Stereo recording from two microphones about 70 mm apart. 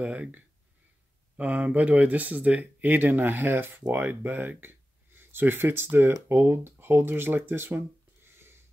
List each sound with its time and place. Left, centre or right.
0.0 s speech: right